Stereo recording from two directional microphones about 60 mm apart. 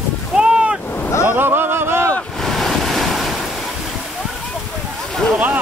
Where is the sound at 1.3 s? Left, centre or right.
Right.